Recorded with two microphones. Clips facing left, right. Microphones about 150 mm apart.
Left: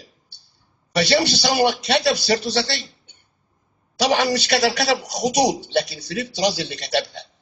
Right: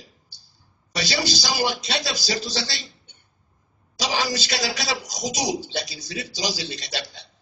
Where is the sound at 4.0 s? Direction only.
60° left (ahead or behind).